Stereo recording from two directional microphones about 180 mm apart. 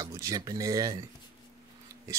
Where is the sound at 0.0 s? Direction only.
15° right (ahead or behind).